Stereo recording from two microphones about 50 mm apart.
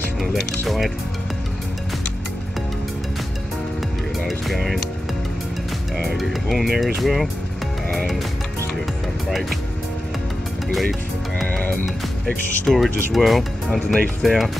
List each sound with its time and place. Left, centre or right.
0.2 s speech: centre
4.3 s speech: centre
5.9 s speech: centre
9.3 s speech: centre
10.7 s speech: centre
11.5 s music: left
12.6 s speech: centre